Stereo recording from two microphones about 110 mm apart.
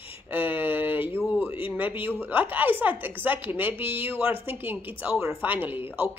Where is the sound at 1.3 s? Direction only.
15° right (ahead or behind).